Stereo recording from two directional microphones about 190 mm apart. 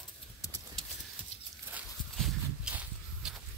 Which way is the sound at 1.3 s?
35° left (ahead or behind).